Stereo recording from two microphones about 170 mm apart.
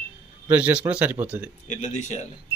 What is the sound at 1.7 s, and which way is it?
Speech, 45° left (ahead or behind).